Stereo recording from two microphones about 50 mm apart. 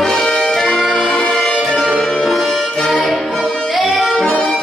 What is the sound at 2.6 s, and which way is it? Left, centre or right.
Music, centre.